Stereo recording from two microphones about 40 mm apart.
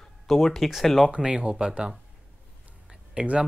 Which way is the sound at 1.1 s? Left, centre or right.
Right.